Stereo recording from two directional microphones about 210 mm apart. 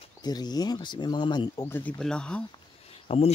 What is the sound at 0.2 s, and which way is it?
Speech, 20° left (ahead or behind).